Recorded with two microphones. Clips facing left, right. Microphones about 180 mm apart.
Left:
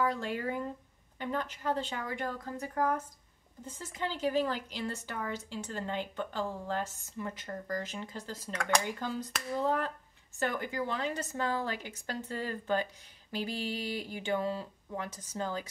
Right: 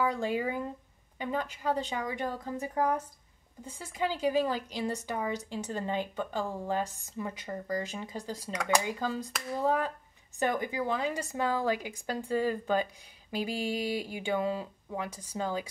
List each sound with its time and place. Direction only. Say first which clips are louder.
0.0 s a woman's voice: right 3 dB; 15° right (ahead or behind)